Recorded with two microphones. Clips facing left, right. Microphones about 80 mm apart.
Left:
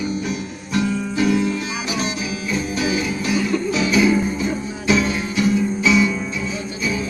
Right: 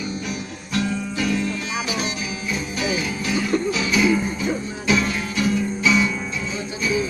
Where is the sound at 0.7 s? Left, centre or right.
Centre.